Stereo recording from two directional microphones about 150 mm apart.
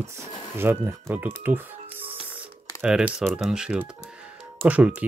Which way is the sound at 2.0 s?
15° right (ahead or behind).